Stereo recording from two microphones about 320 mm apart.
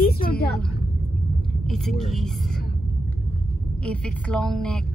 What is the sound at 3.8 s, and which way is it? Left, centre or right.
A woman's voice, centre.